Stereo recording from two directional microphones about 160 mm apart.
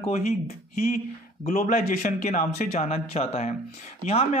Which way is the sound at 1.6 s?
55° left (ahead or behind).